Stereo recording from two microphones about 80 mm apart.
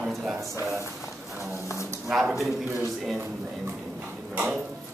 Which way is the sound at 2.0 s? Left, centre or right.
Centre.